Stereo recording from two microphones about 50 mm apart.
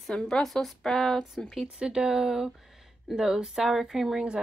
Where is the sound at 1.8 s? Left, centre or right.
Centre.